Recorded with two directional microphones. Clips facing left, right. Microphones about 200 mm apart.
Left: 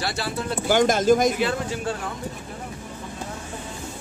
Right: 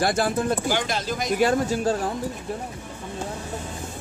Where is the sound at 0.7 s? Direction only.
50° left (ahead or behind).